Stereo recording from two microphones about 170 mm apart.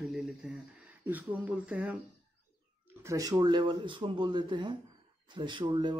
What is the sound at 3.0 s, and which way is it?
Speech, 20° right (ahead or behind).